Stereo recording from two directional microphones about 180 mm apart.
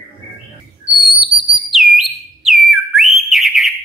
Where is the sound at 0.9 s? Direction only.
30° right (ahead or behind).